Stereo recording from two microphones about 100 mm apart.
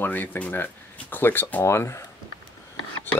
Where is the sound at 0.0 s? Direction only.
20° left (ahead or behind).